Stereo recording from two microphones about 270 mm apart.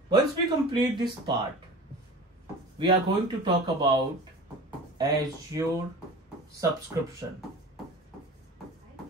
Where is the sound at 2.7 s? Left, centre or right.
Centre.